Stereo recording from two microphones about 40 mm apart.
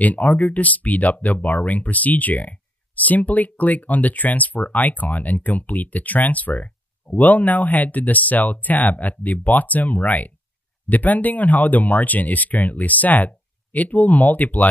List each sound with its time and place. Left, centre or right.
0.0 s speech: left